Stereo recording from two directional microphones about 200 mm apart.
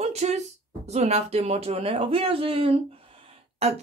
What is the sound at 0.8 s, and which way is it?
Speech, 35° right (ahead or behind).